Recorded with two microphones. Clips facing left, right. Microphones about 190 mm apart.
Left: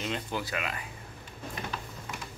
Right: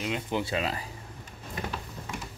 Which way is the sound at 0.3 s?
25° right (ahead or behind).